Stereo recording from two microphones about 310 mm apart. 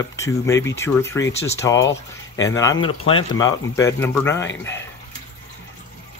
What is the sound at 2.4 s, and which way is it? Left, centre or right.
Speech, centre.